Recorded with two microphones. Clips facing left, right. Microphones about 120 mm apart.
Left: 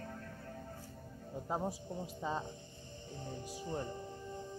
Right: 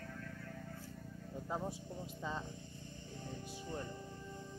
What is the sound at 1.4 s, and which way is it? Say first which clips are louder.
A man's voice: left 4 dB; 30° left (ahead or behind).